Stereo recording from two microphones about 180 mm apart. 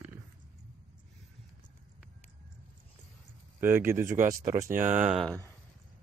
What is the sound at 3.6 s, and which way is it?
Speech, 15° right (ahead or behind).